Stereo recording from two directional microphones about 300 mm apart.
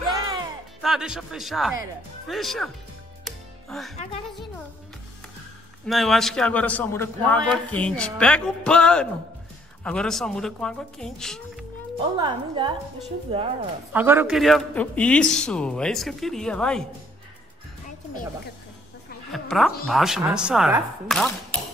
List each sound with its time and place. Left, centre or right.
0.8 s a man's voice: centre
3.3 s music: centre
5.9 s a man's voice: centre
12.2 s a woman's voice: centre
13.9 s a man's voice: centre
19.3 s a man's voice: centre